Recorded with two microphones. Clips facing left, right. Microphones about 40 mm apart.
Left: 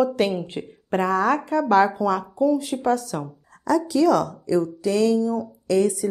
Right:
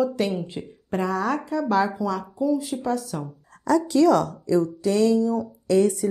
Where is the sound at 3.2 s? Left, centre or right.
Centre.